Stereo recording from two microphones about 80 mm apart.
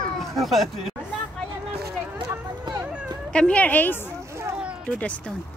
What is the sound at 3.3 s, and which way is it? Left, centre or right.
A woman's voice, centre.